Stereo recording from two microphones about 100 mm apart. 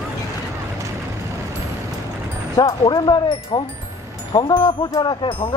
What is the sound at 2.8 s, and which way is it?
Speech, 50° left (ahead or behind).